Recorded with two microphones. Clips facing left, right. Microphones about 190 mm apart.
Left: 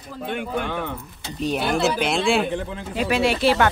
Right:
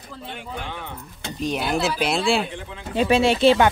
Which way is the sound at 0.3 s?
60° left (ahead or behind).